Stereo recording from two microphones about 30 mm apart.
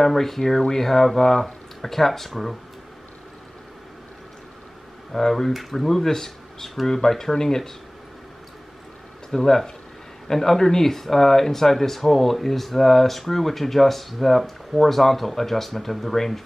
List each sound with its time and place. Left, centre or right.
0.0 s speech: centre
0.8 s speech: centre
5.1 s speech: centre
5.5 s speech: centre
9.3 s speech: centre